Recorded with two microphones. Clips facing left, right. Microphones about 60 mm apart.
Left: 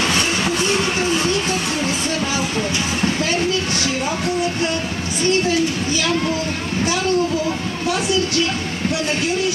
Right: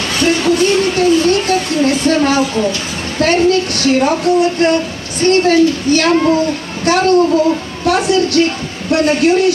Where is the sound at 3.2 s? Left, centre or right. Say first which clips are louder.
Right 8 dB; right.